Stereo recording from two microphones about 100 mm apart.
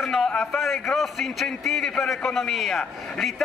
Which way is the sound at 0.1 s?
5° left (ahead or behind).